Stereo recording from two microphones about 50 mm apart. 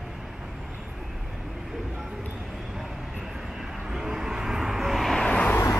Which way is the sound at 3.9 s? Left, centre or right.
Centre.